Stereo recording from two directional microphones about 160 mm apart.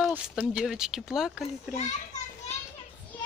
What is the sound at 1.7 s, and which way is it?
Children playing, 45° left (ahead or behind).